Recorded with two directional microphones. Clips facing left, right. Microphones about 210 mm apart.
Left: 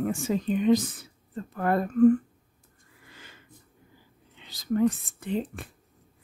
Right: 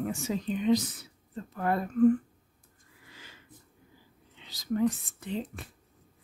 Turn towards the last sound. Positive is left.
turn(degrees=55)  # may be behind; listen again after turning